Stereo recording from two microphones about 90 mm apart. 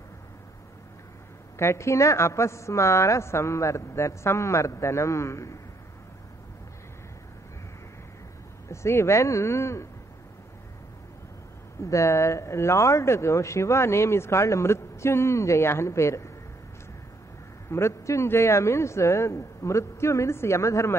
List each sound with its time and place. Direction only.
1.6 s speech: 30° left (ahead or behind)
8.6 s speech: 30° left (ahead or behind)
11.8 s speech: 35° left (ahead or behind)
17.6 s speech: 30° left (ahead or behind)